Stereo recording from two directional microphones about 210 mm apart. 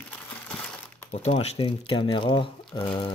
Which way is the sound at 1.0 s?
30° left (ahead or behind).